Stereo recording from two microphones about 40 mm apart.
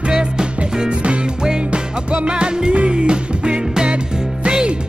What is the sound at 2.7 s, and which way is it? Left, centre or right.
Music, right.